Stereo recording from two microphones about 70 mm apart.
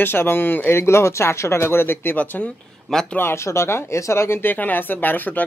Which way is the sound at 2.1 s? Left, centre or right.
Left.